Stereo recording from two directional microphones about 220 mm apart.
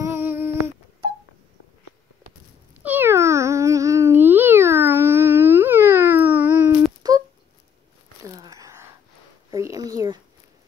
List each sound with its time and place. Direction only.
0.0 s humming: 10° right (ahead or behind)
2.8 s cat: 10° right (ahead or behind)
8.2 s a sound: 15° right (ahead or behind)